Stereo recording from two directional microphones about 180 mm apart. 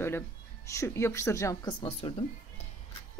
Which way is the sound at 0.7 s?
15° left (ahead or behind).